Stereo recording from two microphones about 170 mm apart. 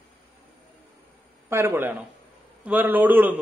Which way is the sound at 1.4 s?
15° right (ahead or behind).